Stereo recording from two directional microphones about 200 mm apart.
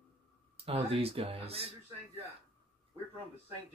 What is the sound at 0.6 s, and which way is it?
Speech, 30° right (ahead or behind).